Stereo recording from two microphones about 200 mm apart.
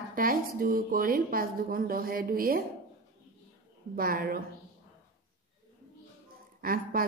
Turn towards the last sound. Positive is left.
turn(degrees=-45)  # may be behind; listen again after turning